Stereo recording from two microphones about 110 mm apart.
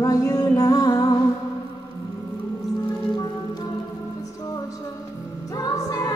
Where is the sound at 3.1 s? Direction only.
40° left (ahead or behind).